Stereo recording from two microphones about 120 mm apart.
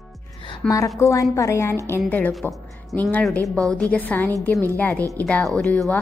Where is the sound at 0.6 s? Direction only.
25° left (ahead or behind).